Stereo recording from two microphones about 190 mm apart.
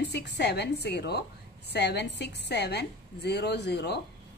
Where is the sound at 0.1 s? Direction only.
60° left (ahead or behind).